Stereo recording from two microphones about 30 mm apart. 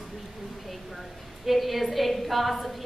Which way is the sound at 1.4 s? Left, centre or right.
Centre.